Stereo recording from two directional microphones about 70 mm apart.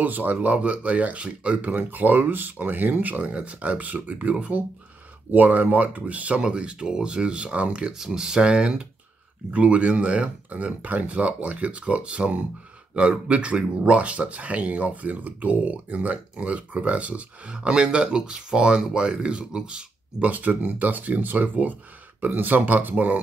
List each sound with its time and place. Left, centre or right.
0.0 s speech: right